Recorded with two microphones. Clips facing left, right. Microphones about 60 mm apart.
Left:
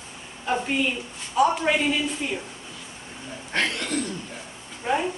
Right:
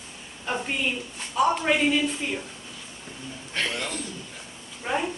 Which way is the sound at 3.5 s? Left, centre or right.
Left.